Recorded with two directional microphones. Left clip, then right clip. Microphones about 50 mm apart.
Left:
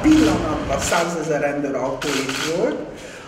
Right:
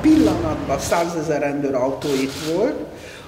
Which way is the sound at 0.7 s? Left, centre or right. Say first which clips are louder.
Even; left.